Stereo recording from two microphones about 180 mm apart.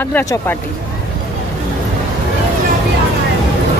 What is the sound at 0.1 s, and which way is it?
Speech, 15° left (ahead or behind).